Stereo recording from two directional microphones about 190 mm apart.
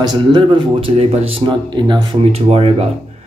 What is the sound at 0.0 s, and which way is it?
Speech, 25° right (ahead or behind).